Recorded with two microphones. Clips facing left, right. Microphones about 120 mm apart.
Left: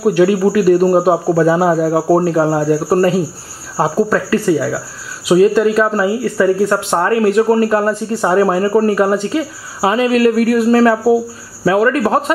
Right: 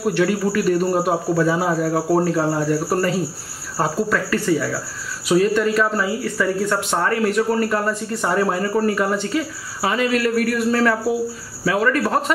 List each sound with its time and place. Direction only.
0.0 s speech: 40° left (ahead or behind)